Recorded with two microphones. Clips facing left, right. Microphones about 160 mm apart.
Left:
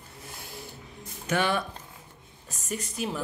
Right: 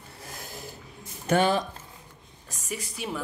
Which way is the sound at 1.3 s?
30° right (ahead or behind).